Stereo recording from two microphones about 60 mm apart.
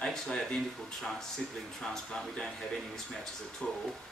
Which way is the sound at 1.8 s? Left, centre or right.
Centre.